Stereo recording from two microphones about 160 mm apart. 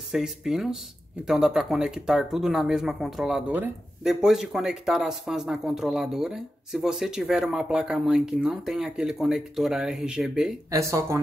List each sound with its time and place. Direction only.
0.1 s speech: 5° right (ahead or behind)
10.7 s speech: 20° right (ahead or behind)